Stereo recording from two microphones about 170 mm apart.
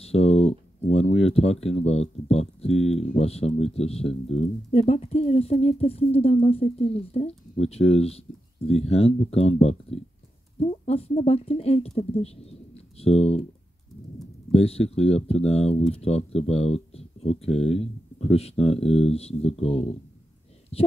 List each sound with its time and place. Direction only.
0.0 s speech: 35° left (ahead or behind)
14.5 s speech: 35° left (ahead or behind)